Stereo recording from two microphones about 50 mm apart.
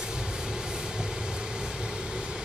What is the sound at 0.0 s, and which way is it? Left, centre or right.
Vehicle, centre.